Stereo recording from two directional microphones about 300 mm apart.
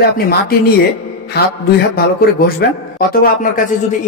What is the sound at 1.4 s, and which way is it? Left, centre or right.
Speech, left.